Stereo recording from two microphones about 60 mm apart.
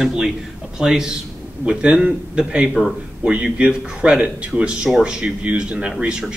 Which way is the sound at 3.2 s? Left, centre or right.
Centre.